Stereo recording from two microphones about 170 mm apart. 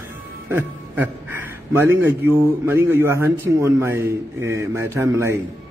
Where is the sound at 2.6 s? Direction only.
15° right (ahead or behind).